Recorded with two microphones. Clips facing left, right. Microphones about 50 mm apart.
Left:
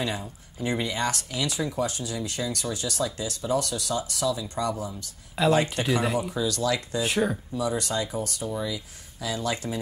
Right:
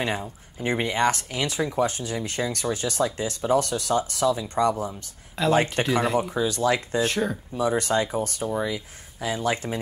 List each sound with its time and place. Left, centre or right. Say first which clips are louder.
0.0 s speech: right 3 dB; right
5.4 s speech: right 1 dB; centre
6.3 s speech: right 3 dB; right
7.0 s speech: right 1 dB; centre
7.5 s speech: right 9 dB; right